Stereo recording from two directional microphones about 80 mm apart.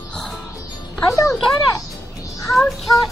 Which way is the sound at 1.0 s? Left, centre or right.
Left.